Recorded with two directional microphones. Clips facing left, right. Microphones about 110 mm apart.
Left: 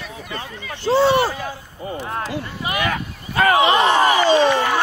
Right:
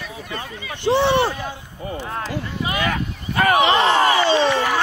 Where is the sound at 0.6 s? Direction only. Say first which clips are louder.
Left 1 dB; 15° right (ahead or behind).